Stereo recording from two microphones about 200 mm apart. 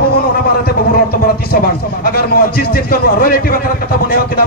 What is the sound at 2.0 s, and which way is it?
Speech, 50° left (ahead or behind).